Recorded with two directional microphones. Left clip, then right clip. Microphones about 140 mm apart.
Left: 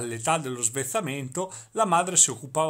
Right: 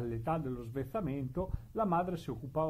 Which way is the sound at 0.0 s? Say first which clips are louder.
Left 10 dB; 15° left (ahead or behind).